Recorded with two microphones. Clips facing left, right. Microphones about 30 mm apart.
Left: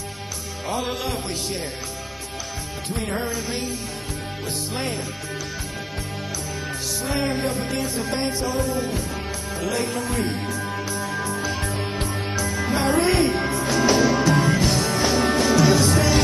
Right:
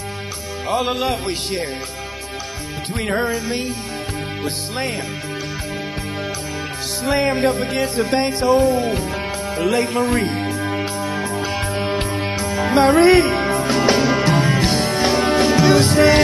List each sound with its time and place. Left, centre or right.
0.7 s music: right
3.1 s music: right
4.7 s music: right
7.0 s music: right
9.6 s speech: right
10.7 s music: right